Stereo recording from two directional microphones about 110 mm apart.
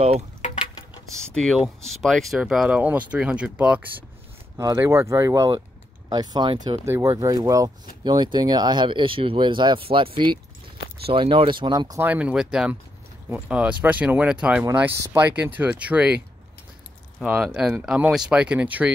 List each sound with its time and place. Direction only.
1.3 s speech: 5° left (ahead or behind); by 3.8 s 10° right (ahead or behind)
4.6 s speech: 25° right (ahead or behind)
6.0 s speech: 40° right (ahead or behind)
6.8 s speech: 30° right (ahead or behind); by 11.9 s 45° right (ahead or behind)
12.0 s speech: 15° right (ahead or behind)
17.3 s speech: 5° right (ahead or behind)